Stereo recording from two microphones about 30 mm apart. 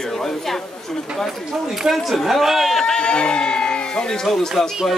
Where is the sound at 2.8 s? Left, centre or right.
Left.